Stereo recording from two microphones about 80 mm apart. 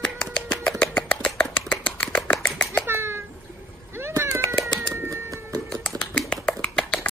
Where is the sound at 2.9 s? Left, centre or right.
Right.